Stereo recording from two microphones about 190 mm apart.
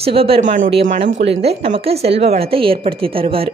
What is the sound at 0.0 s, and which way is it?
A woman's voice, 30° right (ahead or behind).